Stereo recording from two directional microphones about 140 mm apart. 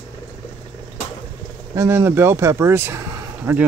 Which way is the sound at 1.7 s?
20° right (ahead or behind).